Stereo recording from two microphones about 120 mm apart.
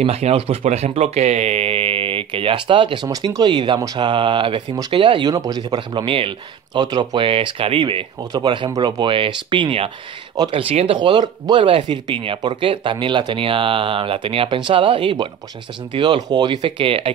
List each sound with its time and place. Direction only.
0.0 s speech: 55° right (ahead or behind)
8.3 s speech: 35° right (ahead or behind)
10.5 s speech: 55° right (ahead or behind)
11.0 s speech: 40° right (ahead or behind)
16.2 s speech: 35° right (ahead or behind)